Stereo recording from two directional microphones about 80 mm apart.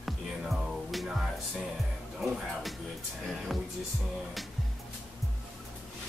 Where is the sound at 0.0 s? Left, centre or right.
Centre.